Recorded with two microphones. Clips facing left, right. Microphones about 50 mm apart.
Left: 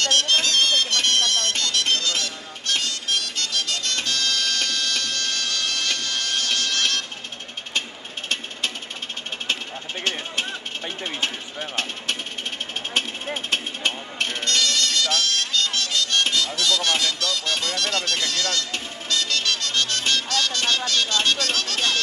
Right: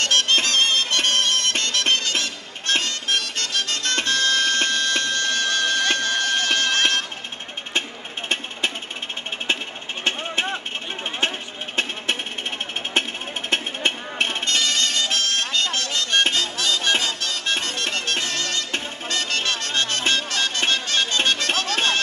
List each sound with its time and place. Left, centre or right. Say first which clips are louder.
0.0 s bagpipes: right 1 dB; right
10.0 s vehicle: right 4 dB; right
13.5 s music: right 4 dB; right